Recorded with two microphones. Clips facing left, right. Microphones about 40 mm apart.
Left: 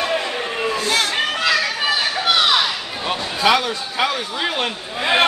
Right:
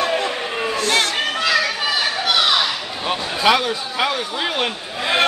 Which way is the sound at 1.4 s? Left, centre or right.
Centre.